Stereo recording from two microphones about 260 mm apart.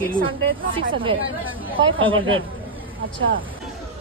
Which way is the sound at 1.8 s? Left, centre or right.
Centre.